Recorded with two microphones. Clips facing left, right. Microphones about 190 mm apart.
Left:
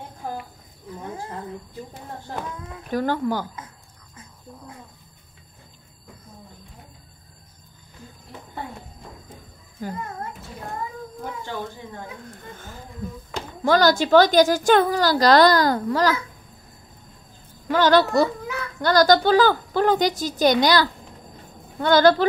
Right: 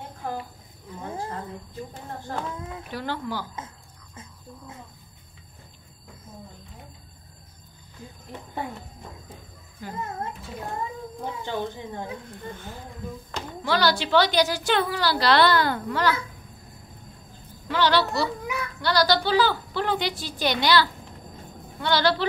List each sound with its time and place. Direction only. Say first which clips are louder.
2.9 s a woman's voice: left 9 dB; 45° left (ahead or behind)
9.8 s a sound: left 6 dB; 45° left (ahead or behind)
13.7 s a woman's voice: left 6 dB; 45° left (ahead or behind)
17.6 s a woman's voice: left 5 dB; 45° left (ahead or behind)